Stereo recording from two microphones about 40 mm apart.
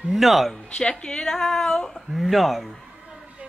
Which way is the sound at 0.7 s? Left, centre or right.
Left.